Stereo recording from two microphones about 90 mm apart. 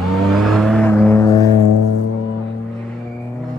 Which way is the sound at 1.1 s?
40° left (ahead or behind).